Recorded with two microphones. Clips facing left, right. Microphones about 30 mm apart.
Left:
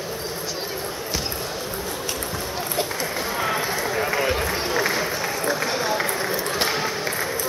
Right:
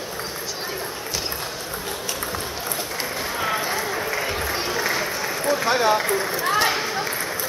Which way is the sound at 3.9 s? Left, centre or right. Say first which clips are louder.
Left 3 dB; centre.